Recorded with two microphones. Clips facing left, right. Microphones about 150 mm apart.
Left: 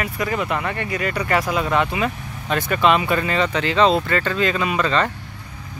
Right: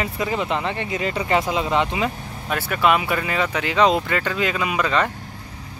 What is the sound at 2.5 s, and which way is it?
Speech, 10° right (ahead or behind).